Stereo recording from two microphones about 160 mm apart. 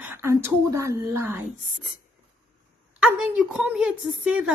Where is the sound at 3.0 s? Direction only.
5° right (ahead or behind).